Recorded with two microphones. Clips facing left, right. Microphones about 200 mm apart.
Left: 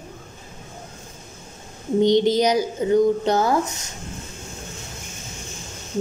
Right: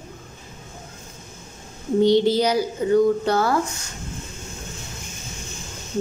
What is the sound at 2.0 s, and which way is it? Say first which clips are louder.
A child's voice: even; 15° left (ahead or behind).